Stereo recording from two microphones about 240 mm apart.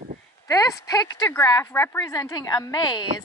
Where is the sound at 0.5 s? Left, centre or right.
Centre.